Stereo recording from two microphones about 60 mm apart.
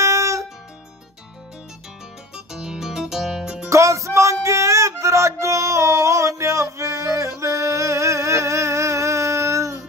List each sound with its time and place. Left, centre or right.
0.0 s music: right
2.3 s music: centre
3.6 s music: right